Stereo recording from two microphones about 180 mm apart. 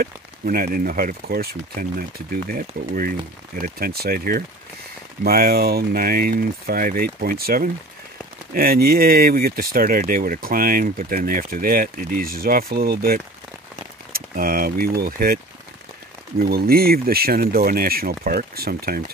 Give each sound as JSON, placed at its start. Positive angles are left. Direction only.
{"t": 0.0, "sound": "speech", "side_deg": -50}